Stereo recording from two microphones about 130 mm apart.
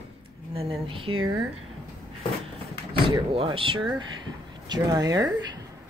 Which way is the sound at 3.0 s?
45° right (ahead or behind).